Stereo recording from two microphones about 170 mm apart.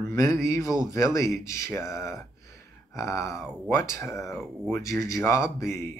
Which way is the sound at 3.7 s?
20° left (ahead or behind).